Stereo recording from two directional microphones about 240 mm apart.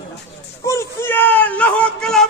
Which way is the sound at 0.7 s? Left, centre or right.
Centre.